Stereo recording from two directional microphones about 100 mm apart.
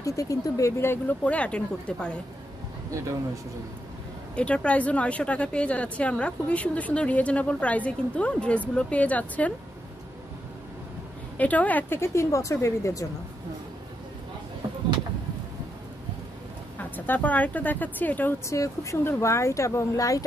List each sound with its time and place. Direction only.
0.0 s speech: 35° left (ahead or behind)
1.2 s speech: 10° left (ahead or behind)
2.9 s speech: 30° right (ahead or behind)
4.4 s speech: 10° left (ahead or behind)
11.3 s speech: 15° left (ahead or behind); by 13.0 s 30° left (ahead or behind)
16.7 s speech: 20° left (ahead or behind)
18.4 s speech: 30° left (ahead or behind)